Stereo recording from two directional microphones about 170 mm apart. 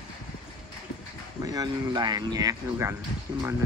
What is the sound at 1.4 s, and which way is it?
Speech, 20° right (ahead or behind).